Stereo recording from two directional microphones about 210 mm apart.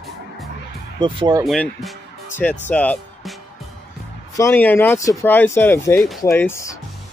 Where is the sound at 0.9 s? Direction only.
20° right (ahead or behind).